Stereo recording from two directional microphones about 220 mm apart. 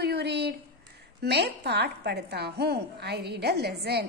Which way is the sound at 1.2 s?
50° right (ahead or behind).